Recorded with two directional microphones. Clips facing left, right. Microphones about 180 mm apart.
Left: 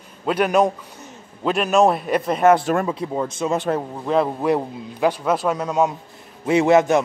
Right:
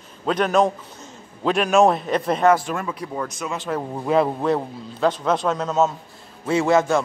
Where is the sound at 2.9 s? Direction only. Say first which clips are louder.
Left 4 dB; 25° left (ahead or behind).